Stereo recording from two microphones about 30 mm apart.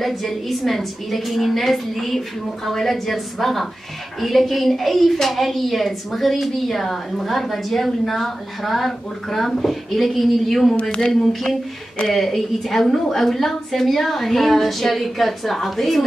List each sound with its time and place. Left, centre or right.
0.0 s a woman's voice: centre
9.8 s a woman's voice: centre
10.8 s speech: left
11.1 s a woman's voice: centre